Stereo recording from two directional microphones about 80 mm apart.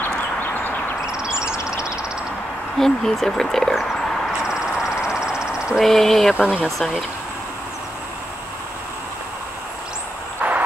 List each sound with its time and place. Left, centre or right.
2.8 s speech: centre
4.6 s a sound: centre
5.9 s speech: centre
6.3 s speech: centre
6.6 s speech: centre
10.4 s vehicle: right